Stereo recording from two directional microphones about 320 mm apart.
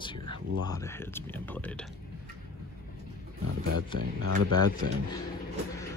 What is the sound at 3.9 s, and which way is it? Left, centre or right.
Speech, right.